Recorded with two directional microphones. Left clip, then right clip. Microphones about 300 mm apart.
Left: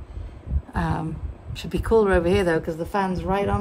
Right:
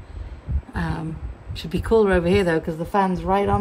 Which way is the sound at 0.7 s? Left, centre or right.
Centre.